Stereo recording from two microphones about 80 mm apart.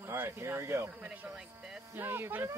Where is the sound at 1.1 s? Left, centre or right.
Right.